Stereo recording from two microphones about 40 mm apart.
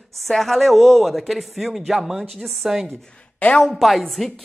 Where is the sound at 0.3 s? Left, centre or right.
Centre.